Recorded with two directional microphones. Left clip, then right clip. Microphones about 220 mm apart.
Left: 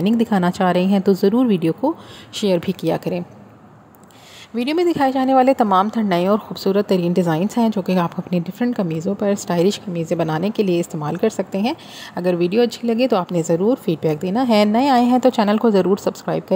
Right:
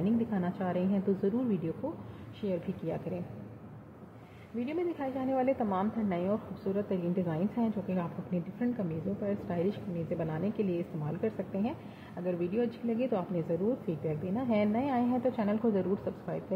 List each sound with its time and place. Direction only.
0.0 s a woman's voice: 45° left (ahead or behind)
4.6 s a woman's voice: 45° left (ahead or behind)